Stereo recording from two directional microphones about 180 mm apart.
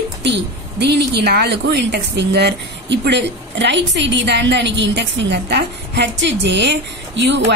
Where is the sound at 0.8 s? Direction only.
65° right (ahead or behind).